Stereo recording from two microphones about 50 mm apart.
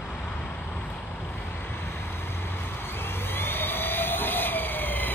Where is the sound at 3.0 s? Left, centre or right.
Left.